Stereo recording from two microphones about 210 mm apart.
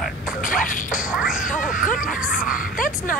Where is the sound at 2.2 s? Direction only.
5° right (ahead or behind).